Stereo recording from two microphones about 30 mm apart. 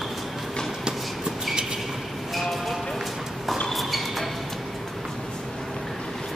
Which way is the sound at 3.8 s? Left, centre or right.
Centre.